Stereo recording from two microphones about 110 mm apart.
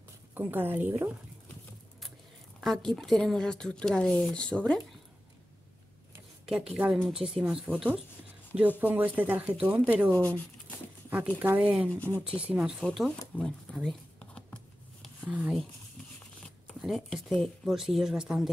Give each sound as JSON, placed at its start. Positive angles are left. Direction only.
{"t": 0.3, "sound": "speech", "side_deg": -20}
{"t": 2.6, "sound": "speech", "side_deg": 5}
{"t": 6.4, "sound": "speech", "side_deg": -5}
{"t": 12.8, "sound": "speech", "side_deg": 5}
{"t": 13.4, "sound": "shuffling cards", "side_deg": 5}
{"t": 15.2, "sound": "speech", "side_deg": -10}
{"t": 16.6, "sound": "speech", "side_deg": 0}